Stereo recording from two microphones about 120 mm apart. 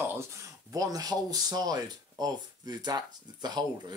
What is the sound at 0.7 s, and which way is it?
Speech, 30° right (ahead or behind).